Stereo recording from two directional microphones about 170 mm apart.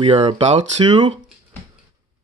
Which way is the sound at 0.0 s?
30° right (ahead or behind).